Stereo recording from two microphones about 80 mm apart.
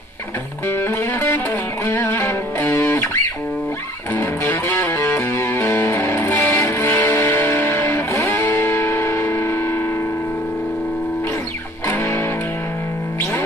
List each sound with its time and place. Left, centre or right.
0.7 s music: left
4.1 s music: left
11.9 s music: left